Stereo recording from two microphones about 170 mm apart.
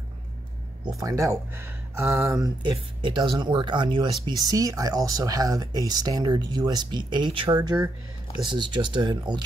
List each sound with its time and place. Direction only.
0.8 s speech: 20° right (ahead or behind)